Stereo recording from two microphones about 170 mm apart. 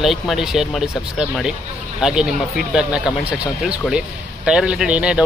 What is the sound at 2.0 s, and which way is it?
Speech, 5° right (ahead or behind).